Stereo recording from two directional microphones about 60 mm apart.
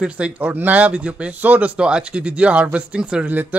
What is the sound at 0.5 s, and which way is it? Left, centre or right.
Speech, right.